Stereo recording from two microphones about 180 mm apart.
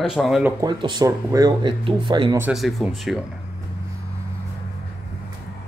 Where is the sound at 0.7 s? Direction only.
25° right (ahead or behind).